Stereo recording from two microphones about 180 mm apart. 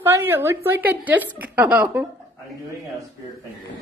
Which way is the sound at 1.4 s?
10° right (ahead or behind).